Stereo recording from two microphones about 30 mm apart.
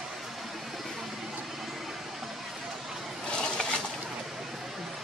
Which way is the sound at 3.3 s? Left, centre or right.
Left.